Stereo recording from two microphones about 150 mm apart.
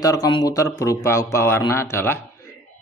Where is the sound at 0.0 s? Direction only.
25° left (ahead or behind).